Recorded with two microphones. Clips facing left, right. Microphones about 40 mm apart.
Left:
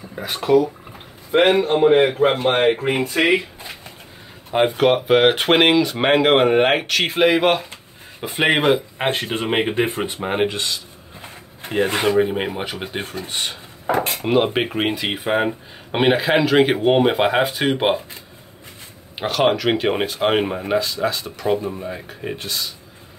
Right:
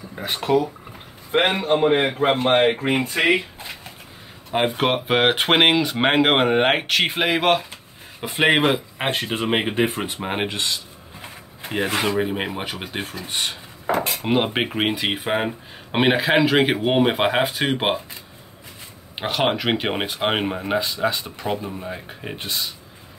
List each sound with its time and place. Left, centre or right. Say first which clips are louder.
0.3 s speech: left 3 dB; right
1.4 s speech: left 4 dB; centre
3.0 s speech: left 2 dB; right
3.3 s a sound: left 1 dB; centre
4.5 s speech: left 3 dB; centre
4.7 s speech: left 6 dB; centre
11.9 s speech: left 4 dB; centre
13.9 s cutlery: left 2 dB; centre
14.2 s speech: left 4 dB; centre
19.1 s speech: left 3 dB; centre
21.6 s speech: left 4 dB; centre
21.9 s speech: left 3 dB; centre